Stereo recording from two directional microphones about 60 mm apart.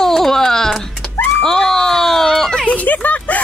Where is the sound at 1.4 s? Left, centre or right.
Centre.